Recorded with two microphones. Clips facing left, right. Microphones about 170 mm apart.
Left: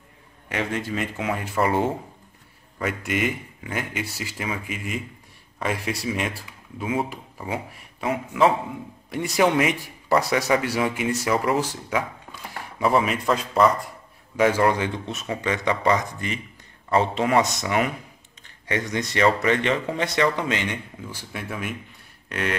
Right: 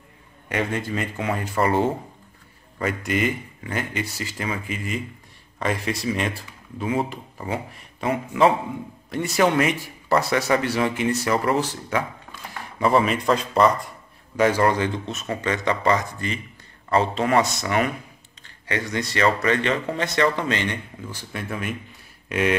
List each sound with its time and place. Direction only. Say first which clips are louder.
0.5 s speech: right 2 dB; centre (ahead or behind)
9.1 s a man's voice: even; 10° left (ahead or behind)
17.4 s a man's voice: even; 15° left (ahead or behind)
18.9 s a man's voice: left 1 dB; 20° left (ahead or behind); by 21.7 s 5° left (ahead or behind)
22.3 s a sound: right 5 dB; 15° right (ahead or behind)